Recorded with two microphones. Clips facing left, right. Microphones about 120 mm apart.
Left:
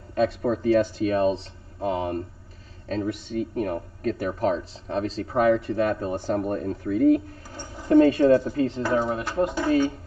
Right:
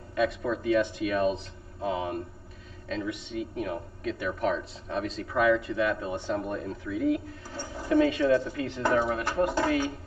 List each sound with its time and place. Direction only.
0.1 s speech: 35° left (ahead or behind)